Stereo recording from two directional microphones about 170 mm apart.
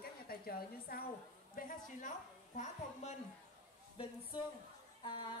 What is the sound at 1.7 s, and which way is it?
A woman's voice, 50° left (ahead or behind).